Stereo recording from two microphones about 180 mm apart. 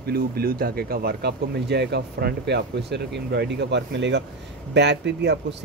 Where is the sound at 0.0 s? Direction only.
60° right (ahead or behind).